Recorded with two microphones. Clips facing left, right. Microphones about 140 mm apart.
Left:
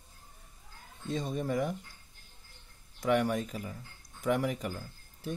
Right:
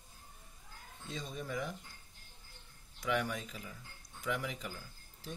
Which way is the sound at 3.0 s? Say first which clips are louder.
Left 7 dB; 50° left (ahead or behind).